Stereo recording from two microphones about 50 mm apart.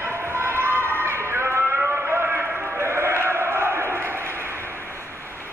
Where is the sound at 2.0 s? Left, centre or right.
Right.